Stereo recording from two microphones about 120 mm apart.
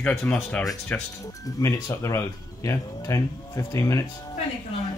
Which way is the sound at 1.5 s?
30° left (ahead or behind).